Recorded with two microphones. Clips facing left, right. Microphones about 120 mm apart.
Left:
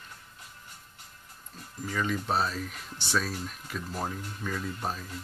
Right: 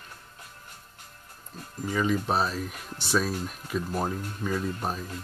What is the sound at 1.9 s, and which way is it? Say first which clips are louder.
Speech: right 4 dB; 10° right (ahead or behind).